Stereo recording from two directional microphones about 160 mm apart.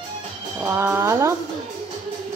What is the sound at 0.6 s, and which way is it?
Speech, 15° right (ahead or behind).